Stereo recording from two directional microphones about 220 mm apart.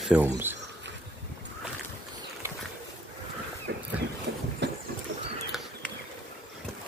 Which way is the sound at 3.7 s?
50° right (ahead or behind).